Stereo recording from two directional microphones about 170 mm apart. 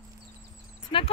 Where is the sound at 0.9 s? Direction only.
30° left (ahead or behind).